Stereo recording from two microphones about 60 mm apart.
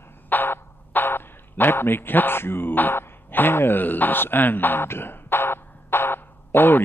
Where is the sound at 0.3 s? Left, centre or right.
Left.